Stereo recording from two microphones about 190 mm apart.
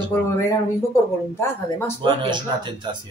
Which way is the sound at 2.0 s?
25° right (ahead or behind).